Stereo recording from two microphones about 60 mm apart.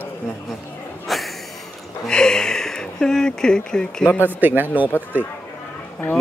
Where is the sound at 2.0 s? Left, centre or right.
Centre.